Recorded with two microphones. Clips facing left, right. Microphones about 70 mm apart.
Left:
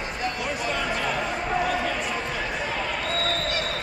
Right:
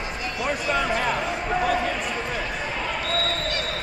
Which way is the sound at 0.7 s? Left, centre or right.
Right.